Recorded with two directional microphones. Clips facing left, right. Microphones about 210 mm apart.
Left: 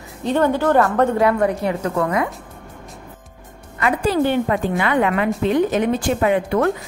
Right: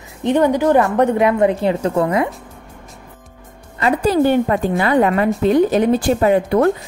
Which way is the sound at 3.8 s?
40° right (ahead or behind).